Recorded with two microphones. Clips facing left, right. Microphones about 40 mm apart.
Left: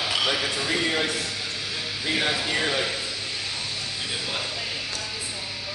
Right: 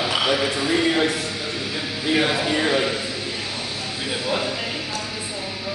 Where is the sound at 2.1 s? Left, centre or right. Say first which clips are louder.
Right 5 dB; centre.